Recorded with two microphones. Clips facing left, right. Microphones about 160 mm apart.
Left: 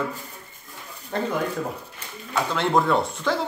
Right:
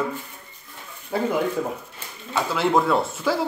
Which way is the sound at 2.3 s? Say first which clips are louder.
Right 1 dB; 5° right (ahead or behind).